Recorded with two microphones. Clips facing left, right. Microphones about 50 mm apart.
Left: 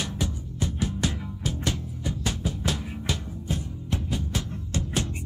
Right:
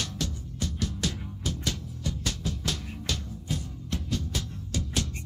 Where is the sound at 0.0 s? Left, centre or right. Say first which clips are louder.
Left 3 dB; centre.